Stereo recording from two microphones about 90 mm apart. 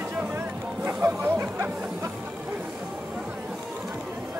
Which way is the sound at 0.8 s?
25° right (ahead or behind).